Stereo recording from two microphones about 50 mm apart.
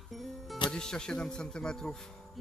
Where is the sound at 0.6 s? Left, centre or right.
Centre.